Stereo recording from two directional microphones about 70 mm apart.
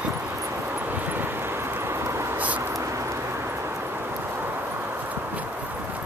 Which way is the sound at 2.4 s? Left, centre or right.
Right.